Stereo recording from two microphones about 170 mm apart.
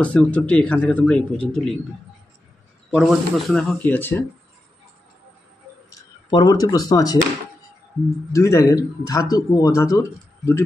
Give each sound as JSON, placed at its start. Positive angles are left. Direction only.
{"t": 0.0, "sound": "speech", "side_deg": 5}
{"t": 2.9, "sound": "speech", "side_deg": 0}
{"t": 6.3, "sound": "a man's voice", "side_deg": 25}
{"t": 8.3, "sound": "a man's voice", "side_deg": 20}